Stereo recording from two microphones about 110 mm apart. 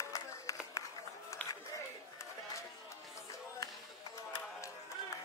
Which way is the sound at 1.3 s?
30° left (ahead or behind).